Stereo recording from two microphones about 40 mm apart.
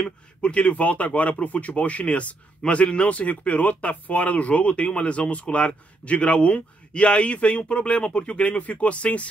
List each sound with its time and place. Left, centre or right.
0.0 s speech: left